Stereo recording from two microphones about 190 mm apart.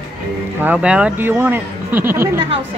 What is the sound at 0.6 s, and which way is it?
Speech, 10° right (ahead or behind).